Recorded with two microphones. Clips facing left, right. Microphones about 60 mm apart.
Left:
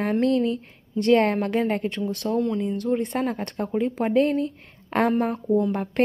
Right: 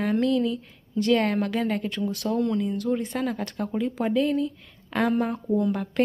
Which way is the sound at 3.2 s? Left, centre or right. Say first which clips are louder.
Left 2 dB; left.